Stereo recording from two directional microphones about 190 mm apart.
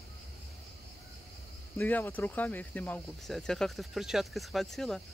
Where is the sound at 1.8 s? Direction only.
10° left (ahead or behind).